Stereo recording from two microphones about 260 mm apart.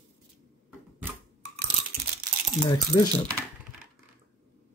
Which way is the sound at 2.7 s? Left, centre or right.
Centre.